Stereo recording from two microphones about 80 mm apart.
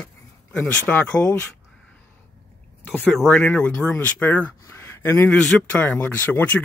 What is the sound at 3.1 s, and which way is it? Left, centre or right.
Speech, centre.